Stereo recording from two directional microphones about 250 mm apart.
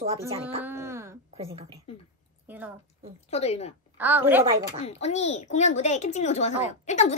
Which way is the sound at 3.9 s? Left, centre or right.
Centre.